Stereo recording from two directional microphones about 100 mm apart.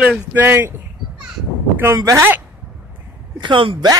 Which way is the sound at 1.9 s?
35° right (ahead or behind).